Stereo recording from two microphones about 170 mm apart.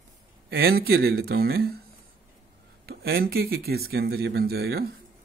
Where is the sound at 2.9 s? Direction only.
65° right (ahead or behind).